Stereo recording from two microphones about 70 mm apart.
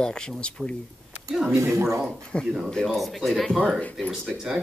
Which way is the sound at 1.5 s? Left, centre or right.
Right.